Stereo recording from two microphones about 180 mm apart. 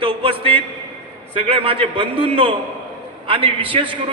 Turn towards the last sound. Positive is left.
turn(degrees=-30)  # may be behind; listen again after turning